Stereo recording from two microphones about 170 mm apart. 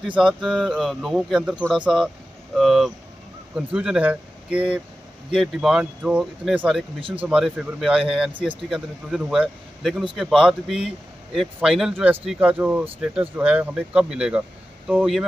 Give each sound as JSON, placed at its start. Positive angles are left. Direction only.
{"t": 0.0, "sound": "speech", "side_deg": -5}
{"t": 8.3, "sound": "speech", "side_deg": -30}
{"t": 8.6, "sound": "speech", "side_deg": 0}